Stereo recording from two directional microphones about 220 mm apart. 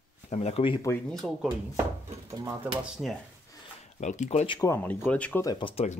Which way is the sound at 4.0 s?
35° left (ahead or behind).